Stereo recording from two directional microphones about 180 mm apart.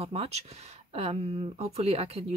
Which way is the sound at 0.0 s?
35° right (ahead or behind).